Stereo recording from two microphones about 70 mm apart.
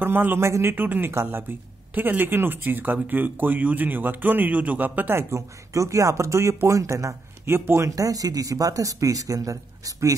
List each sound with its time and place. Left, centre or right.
0.0 s a man's voice: right
5.3 s speech: right
7.9 s speech: right